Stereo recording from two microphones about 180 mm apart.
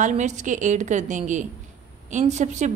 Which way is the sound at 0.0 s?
40° right (ahead or behind).